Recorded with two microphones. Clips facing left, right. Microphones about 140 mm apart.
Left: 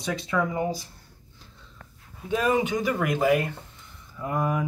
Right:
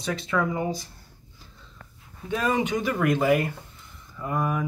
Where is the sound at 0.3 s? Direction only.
5° left (ahead or behind).